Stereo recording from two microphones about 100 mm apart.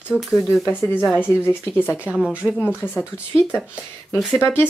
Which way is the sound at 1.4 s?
20° left (ahead or behind).